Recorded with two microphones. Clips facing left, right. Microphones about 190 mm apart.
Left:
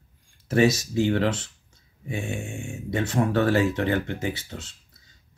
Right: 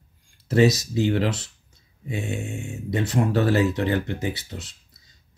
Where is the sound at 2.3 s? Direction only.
20° right (ahead or behind).